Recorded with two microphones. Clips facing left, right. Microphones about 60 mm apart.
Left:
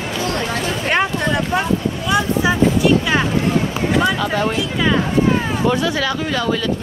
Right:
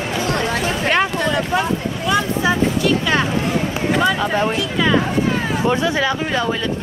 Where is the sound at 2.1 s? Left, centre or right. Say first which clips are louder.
Even; centre.